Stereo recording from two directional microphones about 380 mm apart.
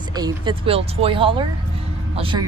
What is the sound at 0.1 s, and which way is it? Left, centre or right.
Speech, centre.